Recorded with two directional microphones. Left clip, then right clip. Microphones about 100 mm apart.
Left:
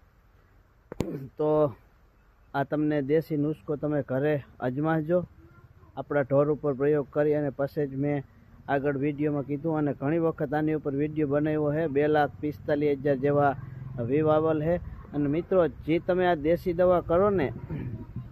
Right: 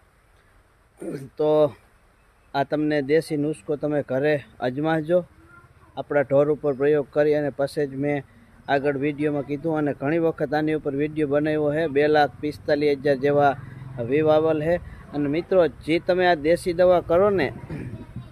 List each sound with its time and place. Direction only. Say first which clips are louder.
1.0 s speech: right 5 dB; 25° right (ahead or behind)